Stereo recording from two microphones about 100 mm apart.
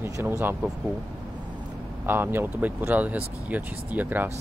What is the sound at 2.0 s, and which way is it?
Speech, 20° right (ahead or behind).